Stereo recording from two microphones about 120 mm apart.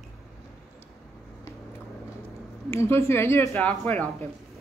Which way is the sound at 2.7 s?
20° left (ahead or behind).